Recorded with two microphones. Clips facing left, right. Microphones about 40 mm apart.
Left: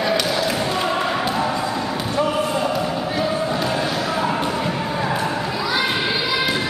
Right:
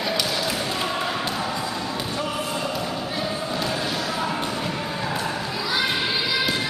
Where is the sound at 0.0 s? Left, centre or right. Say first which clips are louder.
Left 5 dB; centre.